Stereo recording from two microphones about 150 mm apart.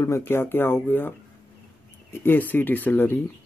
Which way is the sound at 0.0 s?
15° left (ahead or behind).